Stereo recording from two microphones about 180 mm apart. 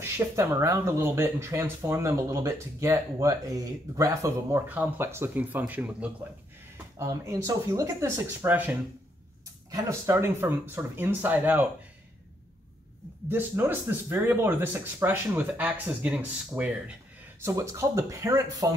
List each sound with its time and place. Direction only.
0.2 s speech: 15° right (ahead or behind)
13.3 s speech: 10° right (ahead or behind)